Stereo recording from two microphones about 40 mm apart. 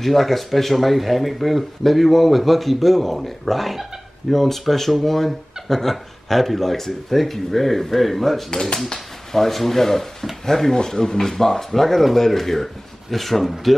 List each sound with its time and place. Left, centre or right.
0.0 s speech: centre
8.5 s speech: centre